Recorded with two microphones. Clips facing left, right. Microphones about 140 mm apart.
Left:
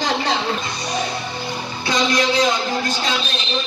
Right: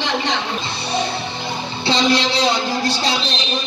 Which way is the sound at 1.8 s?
30° right (ahead or behind).